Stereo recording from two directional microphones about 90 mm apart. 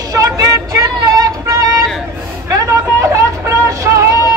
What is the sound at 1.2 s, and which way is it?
Female singing, 40° right (ahead or behind).